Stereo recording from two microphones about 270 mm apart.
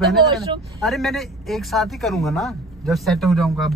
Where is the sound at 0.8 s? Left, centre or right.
Centre.